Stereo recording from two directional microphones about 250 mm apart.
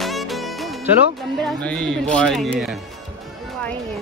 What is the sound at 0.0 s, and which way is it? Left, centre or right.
Music, centre.